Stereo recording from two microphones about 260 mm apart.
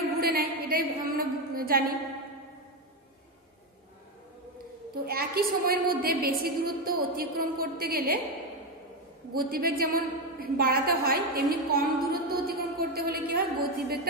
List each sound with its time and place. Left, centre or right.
0.2 s a woman's voice: right
4.6 s a woman's voice: right
9.3 s a woman's voice: right